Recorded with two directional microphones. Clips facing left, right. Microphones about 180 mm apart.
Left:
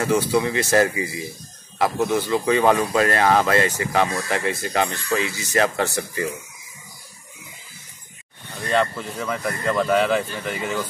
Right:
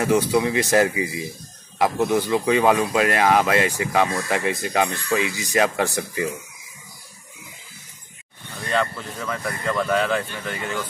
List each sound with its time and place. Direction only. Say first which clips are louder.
0.0 s speech: right 1 dB; 15° right (ahead or behind)
8.6 s speech: left 2 dB; 10° left (ahead or behind)